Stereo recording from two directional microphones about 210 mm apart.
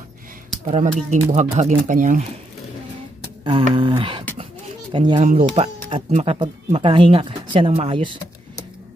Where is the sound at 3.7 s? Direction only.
25° right (ahead or behind).